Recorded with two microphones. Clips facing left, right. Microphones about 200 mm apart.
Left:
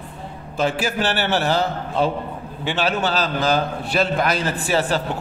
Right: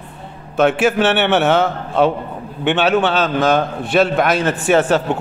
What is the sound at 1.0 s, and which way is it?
A man's voice, 65° right (ahead or behind).